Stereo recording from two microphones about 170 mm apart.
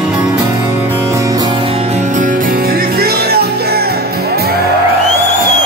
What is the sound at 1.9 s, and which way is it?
Music, 50° right (ahead or behind).